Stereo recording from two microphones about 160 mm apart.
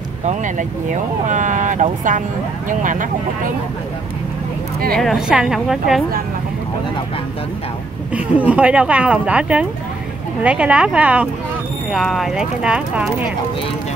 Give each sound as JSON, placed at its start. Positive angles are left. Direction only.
{"t": 0.2, "sound": "speech", "side_deg": -50}
{"t": 4.9, "sound": "speech", "side_deg": 0}
{"t": 8.1, "sound": "speech", "side_deg": -10}